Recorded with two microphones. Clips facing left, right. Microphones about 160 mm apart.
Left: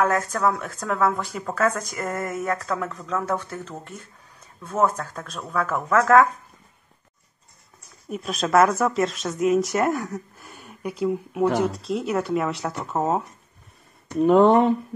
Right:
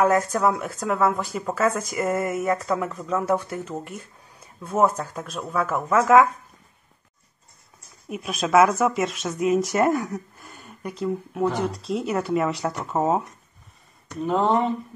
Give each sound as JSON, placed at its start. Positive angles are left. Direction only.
{"t": 0.0, "sound": "speech", "side_deg": -10}
{"t": 8.1, "sound": "speech", "side_deg": -5}
{"t": 14.2, "sound": "speech", "side_deg": 65}